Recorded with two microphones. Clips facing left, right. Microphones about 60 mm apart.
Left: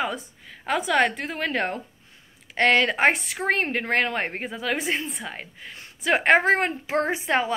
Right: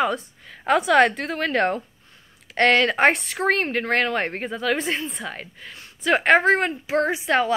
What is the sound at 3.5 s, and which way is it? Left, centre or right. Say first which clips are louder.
A woman's voice: right 2 dB; centre.